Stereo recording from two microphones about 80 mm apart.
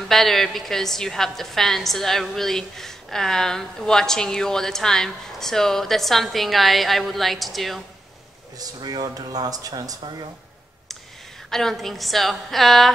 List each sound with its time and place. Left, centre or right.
0.1 s a woman's voice: centre
8.5 s speech: right
11.5 s a woman's voice: centre